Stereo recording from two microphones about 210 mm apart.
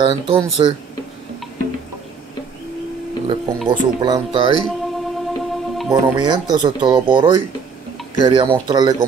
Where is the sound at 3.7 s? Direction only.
20° right (ahead or behind).